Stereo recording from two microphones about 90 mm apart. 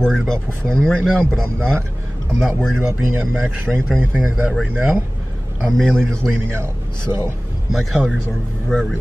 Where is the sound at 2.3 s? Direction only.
Centre (ahead or behind).